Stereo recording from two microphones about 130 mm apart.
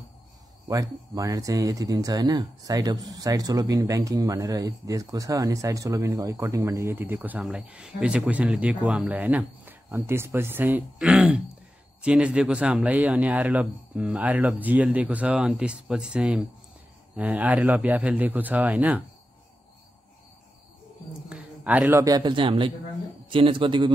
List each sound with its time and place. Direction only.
0.7 s speech: 25° right (ahead or behind)
21.3 s a sound: 10° right (ahead or behind)
22.0 s speech: 30° right (ahead or behind)